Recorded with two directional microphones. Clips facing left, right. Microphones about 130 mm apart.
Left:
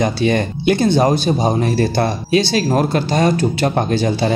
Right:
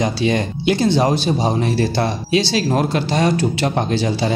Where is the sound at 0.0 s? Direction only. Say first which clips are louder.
Left 2 dB; 50° left (ahead or behind).